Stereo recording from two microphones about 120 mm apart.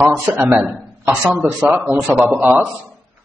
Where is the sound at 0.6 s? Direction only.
5° right (ahead or behind).